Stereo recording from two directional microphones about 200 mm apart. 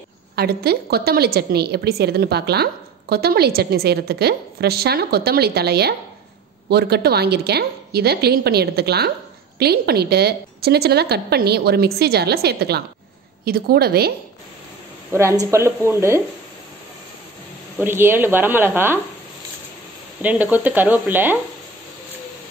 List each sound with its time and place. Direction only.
0.4 s a woman's voice: 50° right (ahead or behind)
15.1 s speech: 15° right (ahead or behind)
17.7 s speech: 10° right (ahead or behind)
20.2 s speech: 10° right (ahead or behind)